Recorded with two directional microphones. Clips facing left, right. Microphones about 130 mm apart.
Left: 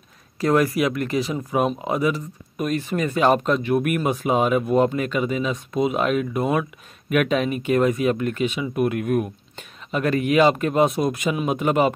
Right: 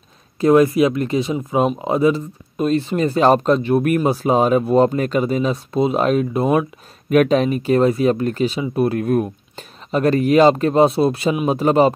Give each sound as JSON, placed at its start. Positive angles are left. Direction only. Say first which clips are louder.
{"t": 0.4, "sound": "speech", "louder": "right 6 dB", "side_deg": -20}